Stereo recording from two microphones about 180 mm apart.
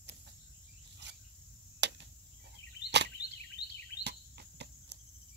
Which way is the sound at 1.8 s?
70° right (ahead or behind).